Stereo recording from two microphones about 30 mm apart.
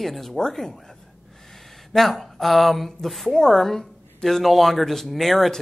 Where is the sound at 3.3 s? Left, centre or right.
Centre.